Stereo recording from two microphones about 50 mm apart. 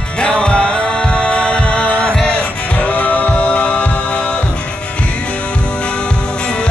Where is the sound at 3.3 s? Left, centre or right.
Left.